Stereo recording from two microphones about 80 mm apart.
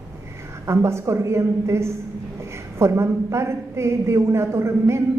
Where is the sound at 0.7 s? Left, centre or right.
Right.